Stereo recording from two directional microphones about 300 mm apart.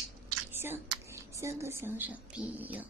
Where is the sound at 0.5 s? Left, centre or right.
Centre.